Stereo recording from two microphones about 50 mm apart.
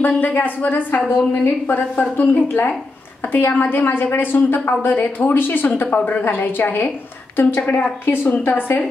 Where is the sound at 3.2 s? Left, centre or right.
Left.